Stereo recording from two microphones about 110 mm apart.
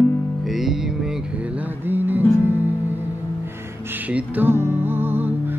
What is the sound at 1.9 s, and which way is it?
Music, 20° right (ahead or behind).